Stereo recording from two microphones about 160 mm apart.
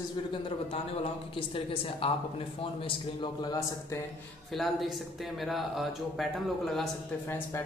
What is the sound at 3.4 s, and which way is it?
Speech, 25° left (ahead or behind).